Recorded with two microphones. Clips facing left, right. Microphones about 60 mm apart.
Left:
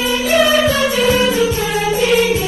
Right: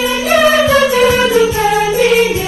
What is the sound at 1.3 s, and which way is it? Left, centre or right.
Music, right.